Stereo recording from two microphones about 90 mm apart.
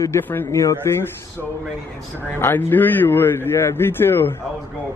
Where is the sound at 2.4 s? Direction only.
20° left (ahead or behind).